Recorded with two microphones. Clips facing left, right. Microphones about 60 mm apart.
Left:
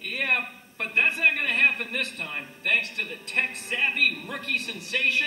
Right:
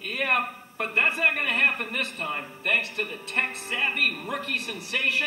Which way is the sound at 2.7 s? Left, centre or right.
Right.